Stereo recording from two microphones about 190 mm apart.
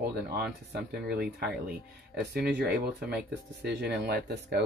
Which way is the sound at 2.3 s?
60° right (ahead or behind).